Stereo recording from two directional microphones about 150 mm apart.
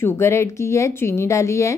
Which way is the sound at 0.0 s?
15° left (ahead or behind).